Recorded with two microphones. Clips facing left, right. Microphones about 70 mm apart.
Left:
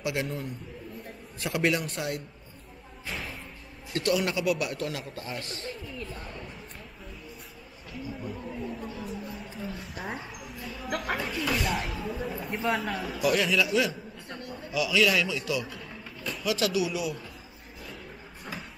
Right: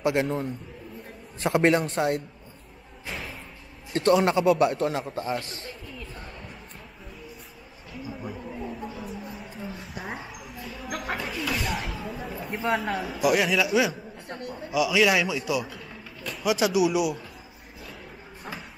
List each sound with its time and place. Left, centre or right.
0.0 s a man's voice: right
3.1 s music: centre
3.9 s a man's voice: right
8.2 s a sound: centre
8.9 s a sound: centre
13.3 s a man's voice: centre